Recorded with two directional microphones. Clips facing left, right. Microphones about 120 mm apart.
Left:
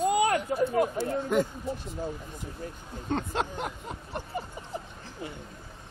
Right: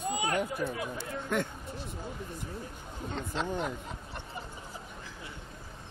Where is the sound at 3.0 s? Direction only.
55° left (ahead or behind).